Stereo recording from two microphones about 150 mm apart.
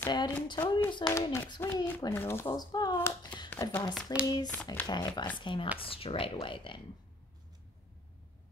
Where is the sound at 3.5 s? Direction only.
15° left (ahead or behind).